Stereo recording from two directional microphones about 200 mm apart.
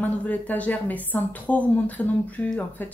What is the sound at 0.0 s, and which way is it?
Speech, 10° left (ahead or behind).